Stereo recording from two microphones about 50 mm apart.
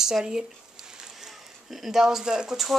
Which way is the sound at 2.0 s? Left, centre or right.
Centre.